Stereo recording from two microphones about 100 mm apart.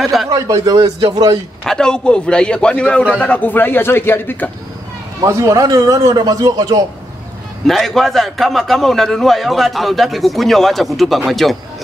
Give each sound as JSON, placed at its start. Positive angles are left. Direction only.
{"t": 0.0, "sound": "a man's voice", "side_deg": 0}
{"t": 0.3, "sound": "a man's voice", "side_deg": -35}
{"t": 1.6, "sound": "a man's voice", "side_deg": 5}
{"t": 5.2, "sound": "a man's voice", "side_deg": -35}
{"t": 7.6, "sound": "a man's voice", "side_deg": 0}